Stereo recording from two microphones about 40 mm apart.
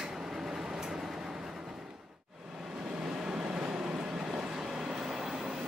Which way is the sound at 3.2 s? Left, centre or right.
Centre.